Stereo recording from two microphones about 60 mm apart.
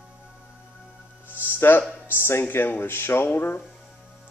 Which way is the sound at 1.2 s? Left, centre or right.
Left.